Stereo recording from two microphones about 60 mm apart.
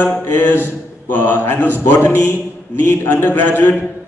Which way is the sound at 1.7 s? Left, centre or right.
Left.